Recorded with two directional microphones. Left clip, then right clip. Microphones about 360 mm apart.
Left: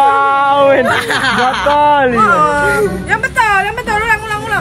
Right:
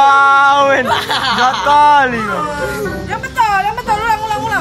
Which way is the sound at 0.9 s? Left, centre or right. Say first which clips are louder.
Left 2 dB; centre.